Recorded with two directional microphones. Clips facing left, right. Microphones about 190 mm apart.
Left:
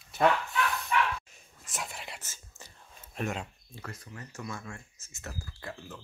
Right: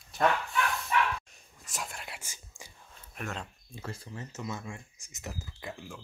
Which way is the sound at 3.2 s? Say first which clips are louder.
Left 6 dB; 25° left (ahead or behind).